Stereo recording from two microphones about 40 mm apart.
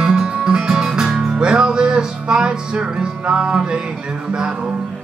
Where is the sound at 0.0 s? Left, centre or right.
Centre.